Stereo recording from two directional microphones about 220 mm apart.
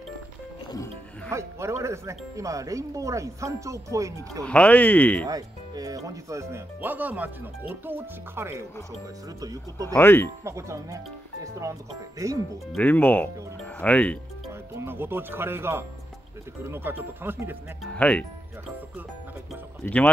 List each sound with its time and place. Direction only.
1.3 s speech: 15° right (ahead or behind)
4.5 s speech: 5° left (ahead or behind)
5.2 s speech: 15° right (ahead or behind)
9.9 s speech: 10° left (ahead or behind)
10.4 s speech: 15° right (ahead or behind)
12.7 s speech: 10° left (ahead or behind)
14.7 s speech: 10° right (ahead or behind)
17.9 s speech: 5° left (ahead or behind)
19.8 s speech: 5° left (ahead or behind)